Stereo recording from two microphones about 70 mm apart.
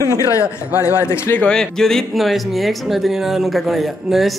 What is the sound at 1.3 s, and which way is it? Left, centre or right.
Speech, centre.